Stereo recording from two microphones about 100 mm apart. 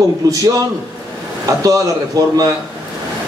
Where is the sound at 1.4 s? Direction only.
35° right (ahead or behind).